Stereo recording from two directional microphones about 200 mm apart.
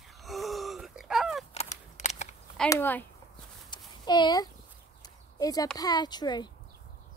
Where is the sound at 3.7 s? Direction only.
20° left (ahead or behind).